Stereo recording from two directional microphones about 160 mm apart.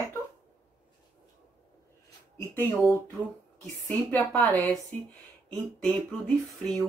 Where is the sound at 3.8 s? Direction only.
10° left (ahead or behind).